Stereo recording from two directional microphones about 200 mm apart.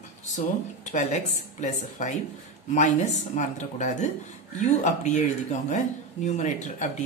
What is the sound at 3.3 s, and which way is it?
Speech, 35° left (ahead or behind).